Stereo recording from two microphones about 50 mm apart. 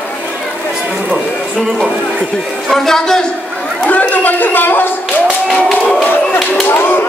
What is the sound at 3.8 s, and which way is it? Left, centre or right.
Speech, left.